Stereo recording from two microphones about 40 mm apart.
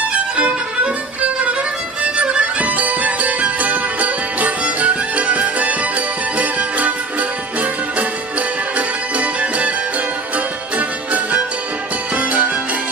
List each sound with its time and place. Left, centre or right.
0.1 s violin: right
2.1 s music: right